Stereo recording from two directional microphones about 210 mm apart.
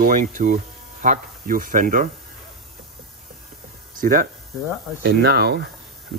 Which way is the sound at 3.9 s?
40° right (ahead or behind).